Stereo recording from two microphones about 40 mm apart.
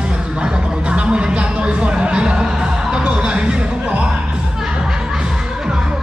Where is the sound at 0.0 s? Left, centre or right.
Right.